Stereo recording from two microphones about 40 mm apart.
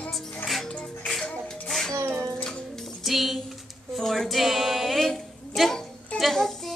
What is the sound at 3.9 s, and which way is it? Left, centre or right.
Music, centre.